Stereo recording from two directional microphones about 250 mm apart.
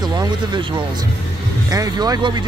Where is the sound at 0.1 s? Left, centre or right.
Centre.